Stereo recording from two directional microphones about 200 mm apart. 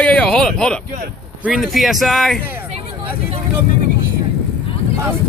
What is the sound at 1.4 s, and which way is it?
Speech, centre (ahead or behind).